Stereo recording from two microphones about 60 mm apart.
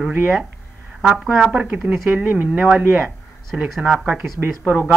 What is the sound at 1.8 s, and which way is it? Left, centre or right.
A woman's voice, right.